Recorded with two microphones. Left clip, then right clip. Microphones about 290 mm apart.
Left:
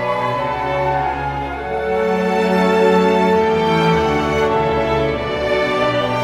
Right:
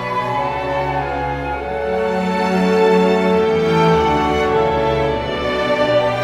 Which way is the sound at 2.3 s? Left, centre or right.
Centre.